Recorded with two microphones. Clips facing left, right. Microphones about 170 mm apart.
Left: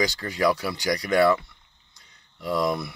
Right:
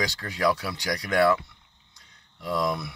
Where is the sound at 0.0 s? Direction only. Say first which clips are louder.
Left 3 dB; centre (ahead or behind).